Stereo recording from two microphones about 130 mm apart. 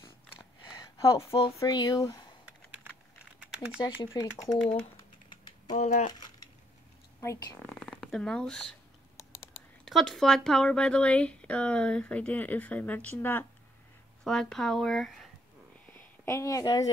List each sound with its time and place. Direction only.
0.7 s a sound: 25° left (ahead or behind)
1.6 s speech: 30° left (ahead or behind)
3.3 s typing: 10° right (ahead or behind)
4.0 s speech: 30° left (ahead or behind)
5.3 s typing: 30° left (ahead or behind)
5.8 s speech: 60° left (ahead or behind)
6.0 s a sound: 35° left (ahead or behind)
7.5 s speech: 10° left (ahead or behind)
9.8 s speech: centre (ahead or behind)
14.2 s speech: 5° left (ahead or behind)
15.9 s a woman's voice: 20° left (ahead or behind)